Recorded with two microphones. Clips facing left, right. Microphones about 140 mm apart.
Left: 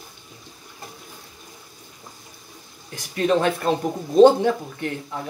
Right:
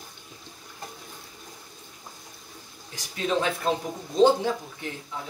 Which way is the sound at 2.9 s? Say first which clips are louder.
Left 6 dB; 55° left (ahead or behind).